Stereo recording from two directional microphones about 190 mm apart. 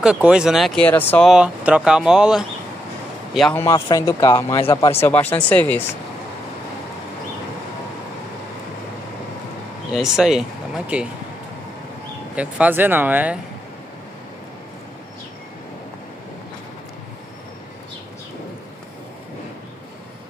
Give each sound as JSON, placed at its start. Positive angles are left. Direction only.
{"t": 0.0, "sound": "speech", "side_deg": -5}
{"t": 3.6, "sound": "speech", "side_deg": 15}
{"t": 9.8, "sound": "speech", "side_deg": -5}
{"t": 12.4, "sound": "speech", "side_deg": -10}